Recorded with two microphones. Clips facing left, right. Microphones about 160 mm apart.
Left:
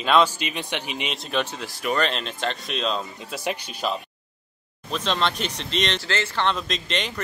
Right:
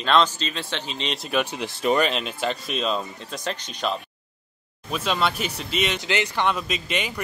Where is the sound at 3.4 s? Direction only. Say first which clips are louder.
Left 1 dB; 10° left (ahead or behind).